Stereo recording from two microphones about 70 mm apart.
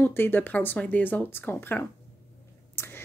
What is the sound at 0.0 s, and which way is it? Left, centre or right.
Speech, left.